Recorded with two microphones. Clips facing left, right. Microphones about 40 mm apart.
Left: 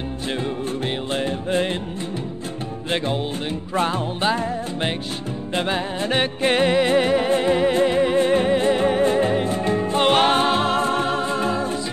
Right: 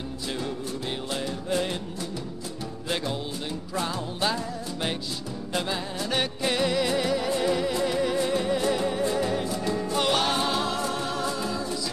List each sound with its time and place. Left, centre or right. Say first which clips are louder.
1.1 s music: left 6 dB; left
3.7 s music: left 9 dB; left
5.5 s music: left 6 dB; left